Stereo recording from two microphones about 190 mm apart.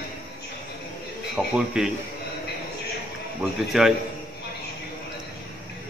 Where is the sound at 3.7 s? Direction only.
Centre (ahead or behind).